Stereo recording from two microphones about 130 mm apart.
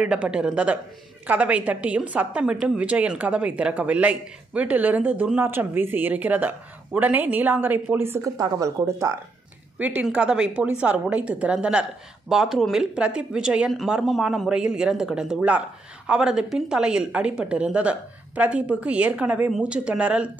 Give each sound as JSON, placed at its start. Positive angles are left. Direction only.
{"t": 0.0, "sound": "a woman's voice", "side_deg": -10}
{"t": 9.8, "sound": "a woman's voice", "side_deg": -10}